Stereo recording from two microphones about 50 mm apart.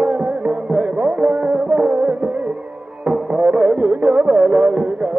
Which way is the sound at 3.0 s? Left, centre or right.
Centre.